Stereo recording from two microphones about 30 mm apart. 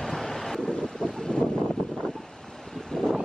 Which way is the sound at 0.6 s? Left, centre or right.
Left.